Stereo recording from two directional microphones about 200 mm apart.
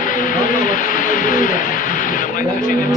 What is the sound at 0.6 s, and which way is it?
Speech, 40° left (ahead or behind).